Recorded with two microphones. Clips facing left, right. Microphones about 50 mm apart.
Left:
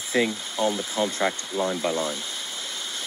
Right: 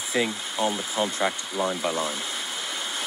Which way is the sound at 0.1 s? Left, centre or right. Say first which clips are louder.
Left 2 dB; centre.